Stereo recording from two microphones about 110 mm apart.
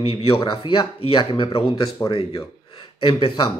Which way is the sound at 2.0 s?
25° left (ahead or behind).